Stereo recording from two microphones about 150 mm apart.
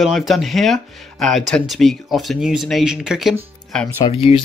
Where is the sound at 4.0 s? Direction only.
40° left (ahead or behind).